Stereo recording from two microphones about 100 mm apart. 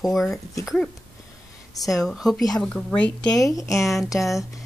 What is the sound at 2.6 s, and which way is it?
Speech, 10° left (ahead or behind).